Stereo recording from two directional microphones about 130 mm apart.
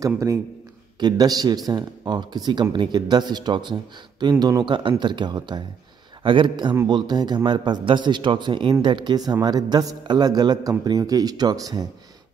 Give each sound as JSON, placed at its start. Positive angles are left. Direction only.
{"t": 0.0, "sound": "a man's voice", "side_deg": -25}